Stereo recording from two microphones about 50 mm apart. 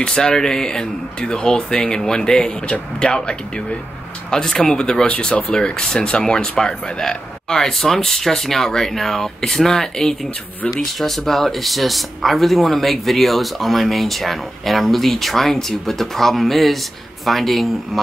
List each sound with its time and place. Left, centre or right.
0.0 s speech: centre